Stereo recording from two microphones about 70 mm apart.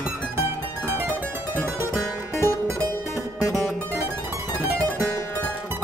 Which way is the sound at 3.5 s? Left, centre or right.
Right.